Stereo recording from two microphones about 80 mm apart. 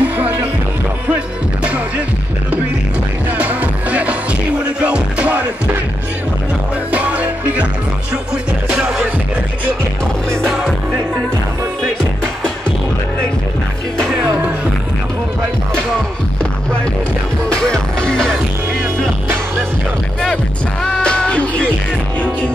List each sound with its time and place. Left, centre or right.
0.0 s music: right
1.6 s music: centre
3.3 s music: centre
6.9 s music: centre
8.6 s music: centre
10.4 s music: centre
17.5 s music: centre
20.8 s music: centre